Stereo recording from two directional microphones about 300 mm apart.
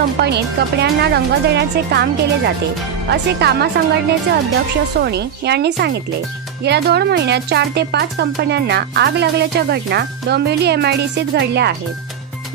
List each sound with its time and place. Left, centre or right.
0.2 s speech: right
5.0 s speech: right